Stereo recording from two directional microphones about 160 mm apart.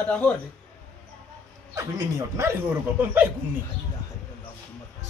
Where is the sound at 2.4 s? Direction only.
15° right (ahead or behind).